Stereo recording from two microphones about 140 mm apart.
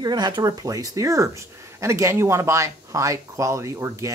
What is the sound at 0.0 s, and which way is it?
Speech, 30° right (ahead or behind).